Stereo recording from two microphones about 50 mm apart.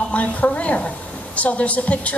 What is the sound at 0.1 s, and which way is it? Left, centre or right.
A woman's voice, left.